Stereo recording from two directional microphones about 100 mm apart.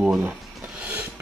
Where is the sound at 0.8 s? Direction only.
15° right (ahead or behind).